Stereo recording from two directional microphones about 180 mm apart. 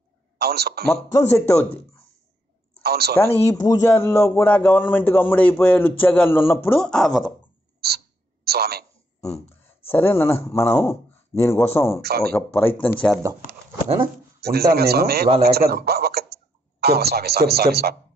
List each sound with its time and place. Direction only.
0.4 s a man's voice: 60° right (ahead or behind)
1.5 s a man's voice: 10° left (ahead or behind)
2.8 s speech: 60° right (ahead or behind)
3.2 s a man's voice: 15° left (ahead or behind)
7.8 s a man's voice: 60° right (ahead or behind)
9.2 s a sound: 35° left (ahead or behind)
9.8 s a man's voice: 10° left (ahead or behind)
12.0 s a man's voice: 60° right (ahead or behind)
12.4 s a man's voice: 10° left (ahead or behind)
14.4 s a man's voice: 60° right (ahead or behind)